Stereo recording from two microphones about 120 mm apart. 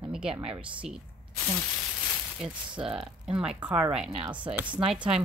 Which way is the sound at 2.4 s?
5° right (ahead or behind).